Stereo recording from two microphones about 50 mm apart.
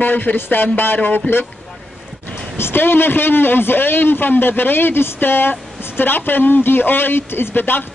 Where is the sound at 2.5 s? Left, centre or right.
Left.